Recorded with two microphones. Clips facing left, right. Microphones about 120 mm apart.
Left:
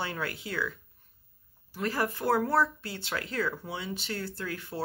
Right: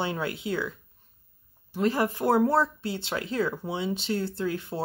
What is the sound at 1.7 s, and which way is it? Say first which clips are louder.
Speech: right 5 dB; 20° right (ahead or behind).